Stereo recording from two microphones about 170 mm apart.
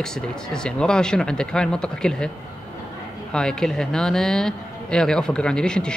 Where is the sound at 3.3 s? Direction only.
5° left (ahead or behind).